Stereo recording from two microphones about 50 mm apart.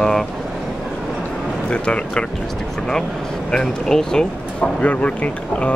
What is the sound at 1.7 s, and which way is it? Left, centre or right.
Speech, left.